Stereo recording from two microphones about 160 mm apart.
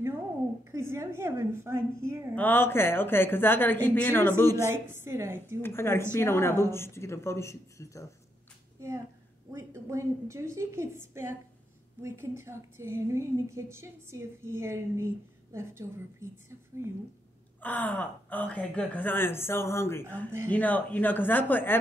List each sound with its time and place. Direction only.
0.7 s a woman's voice: 15° right (ahead or behind)
2.3 s speech: 10° left (ahead or behind)
4.9 s a woman's voice: 15° right (ahead or behind)
5.6 s speech: 15° left (ahead or behind)
8.7 s a sound: 20° right (ahead or behind)
9.6 s a woman's voice: 20° right (ahead or behind)
17.6 s speech: 10° left (ahead or behind)